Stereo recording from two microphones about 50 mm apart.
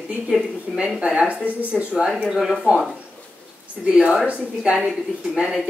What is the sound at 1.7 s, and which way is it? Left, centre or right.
Speech, centre.